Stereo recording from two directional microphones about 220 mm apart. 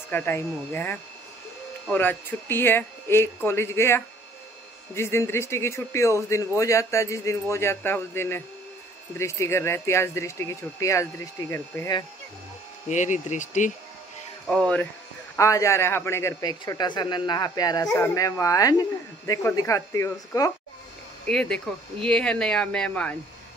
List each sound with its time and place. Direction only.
0.1 s speech: 10° left (ahead or behind)
12.8 s speech: 35° left (ahead or behind)
14.5 s speech: 5° left (ahead or behind)
21.3 s speech: 5° left (ahead or behind)